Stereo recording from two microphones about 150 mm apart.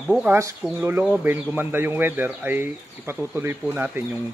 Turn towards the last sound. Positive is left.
turn(degrees=-15)  # may be behind; listen again after turning